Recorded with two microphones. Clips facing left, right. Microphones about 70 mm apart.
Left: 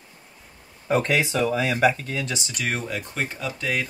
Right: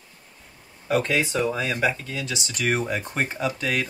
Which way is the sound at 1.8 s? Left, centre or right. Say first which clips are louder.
Left 4 dB; left.